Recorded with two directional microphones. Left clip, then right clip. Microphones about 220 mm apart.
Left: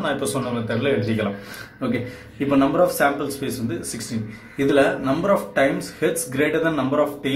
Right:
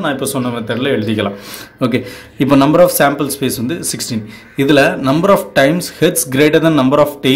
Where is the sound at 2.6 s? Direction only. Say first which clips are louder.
Right 8 dB; 45° right (ahead or behind).